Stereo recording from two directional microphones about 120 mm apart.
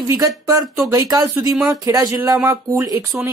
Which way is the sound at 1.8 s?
30° right (ahead or behind).